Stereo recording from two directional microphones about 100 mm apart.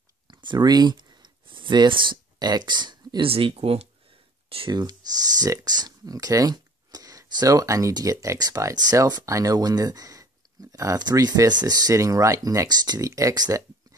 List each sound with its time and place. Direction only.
0.3 s clicking: 50° right (ahead or behind)
3.3 s speech: 65° right (ahead or behind); by 3.9 s 90° right
4.6 s speech: 45° right (ahead or behind)